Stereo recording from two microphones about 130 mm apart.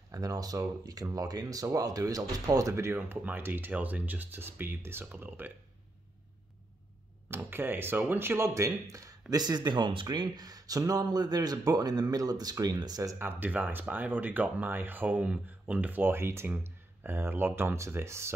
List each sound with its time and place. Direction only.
0.1 s speech: 30° right (ahead or behind)
7.2 s speech: 15° right (ahead or behind)